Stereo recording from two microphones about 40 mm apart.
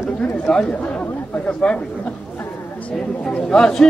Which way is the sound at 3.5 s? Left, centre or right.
Centre.